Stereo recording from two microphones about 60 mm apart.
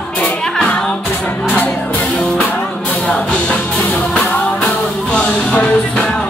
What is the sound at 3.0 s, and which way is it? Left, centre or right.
Music, centre.